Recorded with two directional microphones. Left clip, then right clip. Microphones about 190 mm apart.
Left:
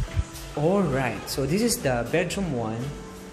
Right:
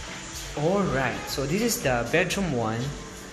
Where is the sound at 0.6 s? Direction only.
30° left (ahead or behind).